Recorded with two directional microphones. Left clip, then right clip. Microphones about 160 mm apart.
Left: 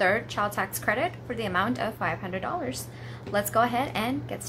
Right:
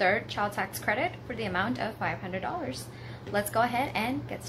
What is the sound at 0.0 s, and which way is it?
A woman's voice, 25° left (ahead or behind).